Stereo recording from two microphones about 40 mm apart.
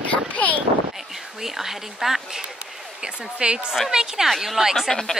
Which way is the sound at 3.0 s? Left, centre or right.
Right.